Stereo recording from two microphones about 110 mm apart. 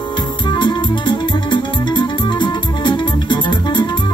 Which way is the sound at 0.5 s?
45° left (ahead or behind).